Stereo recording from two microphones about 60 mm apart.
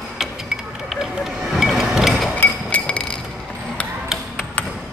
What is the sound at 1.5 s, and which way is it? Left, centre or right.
Music, centre.